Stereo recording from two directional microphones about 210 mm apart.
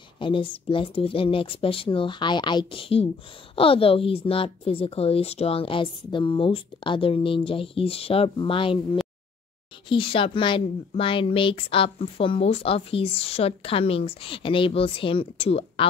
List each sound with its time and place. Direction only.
0.2 s speech: 25° left (ahead or behind)
9.8 s speech: 25° left (ahead or behind)